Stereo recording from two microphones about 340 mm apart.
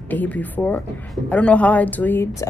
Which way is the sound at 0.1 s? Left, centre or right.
Centre.